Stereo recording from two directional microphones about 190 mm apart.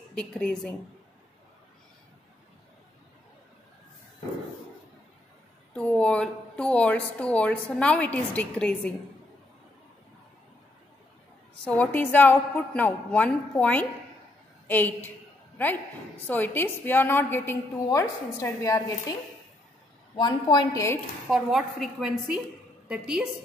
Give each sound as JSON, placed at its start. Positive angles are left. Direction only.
{"t": 0.1, "sound": "a woman's voice", "side_deg": 5}
{"t": 5.7, "sound": "a woman's voice", "side_deg": 5}
{"t": 11.6, "sound": "a woman's voice", "side_deg": 10}
{"t": 20.2, "sound": "a woman's voice", "side_deg": 25}
{"t": 21.3, "sound": "a woman's voice", "side_deg": 0}